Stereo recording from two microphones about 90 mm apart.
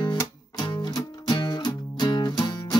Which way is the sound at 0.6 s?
55° left (ahead or behind).